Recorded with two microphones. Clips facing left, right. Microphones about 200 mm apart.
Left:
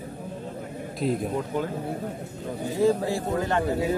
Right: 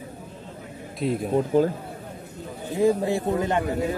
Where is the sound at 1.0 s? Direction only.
Centre (ahead or behind).